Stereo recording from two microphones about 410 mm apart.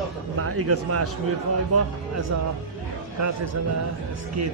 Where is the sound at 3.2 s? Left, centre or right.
Right.